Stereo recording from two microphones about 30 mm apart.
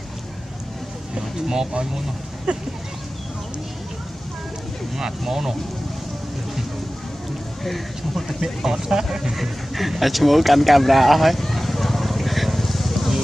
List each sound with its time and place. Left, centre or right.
1.1 s speech: right
4.9 s speech: centre
8.3 s speech: centre
9.3 s speech: centre
11.5 s vehicle: centre